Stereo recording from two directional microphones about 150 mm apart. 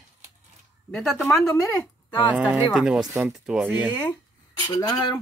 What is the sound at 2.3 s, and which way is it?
Speech, 10° right (ahead or behind).